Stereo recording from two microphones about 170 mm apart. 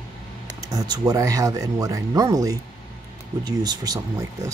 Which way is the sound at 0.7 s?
25° right (ahead or behind).